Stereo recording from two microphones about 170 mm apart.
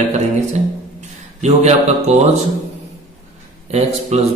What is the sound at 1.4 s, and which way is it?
A man's voice, 40° right (ahead or behind).